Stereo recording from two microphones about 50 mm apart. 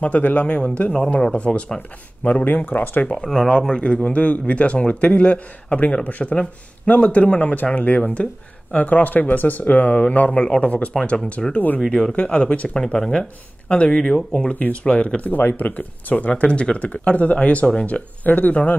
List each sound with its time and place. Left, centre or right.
0.0 s a man's voice: left
2.2 s speech: left
3.3 s a man's voice: centre
11.0 s a man's voice: centre
15.3 s a man's voice: left